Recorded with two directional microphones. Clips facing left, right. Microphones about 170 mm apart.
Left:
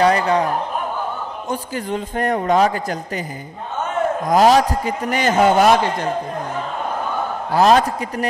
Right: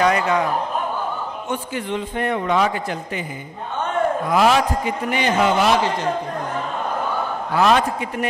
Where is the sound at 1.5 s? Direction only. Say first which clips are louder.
Left 2 dB; 40° left (ahead or behind).